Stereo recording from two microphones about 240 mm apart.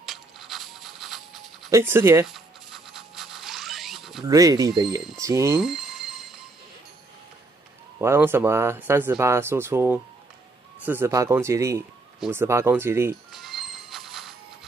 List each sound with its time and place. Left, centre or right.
0.0 s a sound: centre
1.7 s scratch: centre
4.3 s speech: centre
5.6 s music: centre
8.0 s speech: centre
12.2 s music: centre